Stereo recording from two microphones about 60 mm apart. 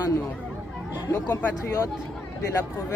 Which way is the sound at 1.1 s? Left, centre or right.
Left.